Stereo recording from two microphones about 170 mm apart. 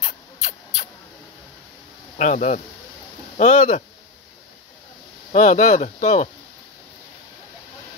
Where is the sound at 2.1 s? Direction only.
45° left (ahead or behind).